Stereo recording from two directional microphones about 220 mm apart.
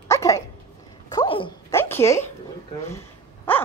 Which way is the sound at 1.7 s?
10° left (ahead or behind).